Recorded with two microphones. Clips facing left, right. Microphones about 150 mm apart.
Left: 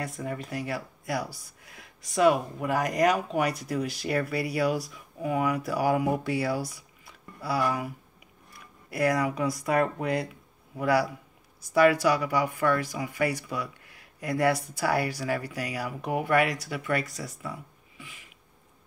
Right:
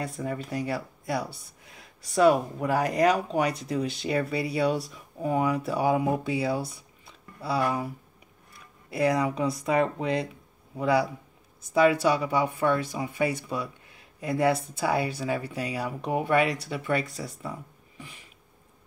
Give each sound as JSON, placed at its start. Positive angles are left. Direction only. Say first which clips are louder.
{"t": 0.0, "sound": "speech", "louder": "right 2 dB", "side_deg": -30}
{"t": 8.9, "sound": "speech", "louder": "right 1 dB", "side_deg": -30}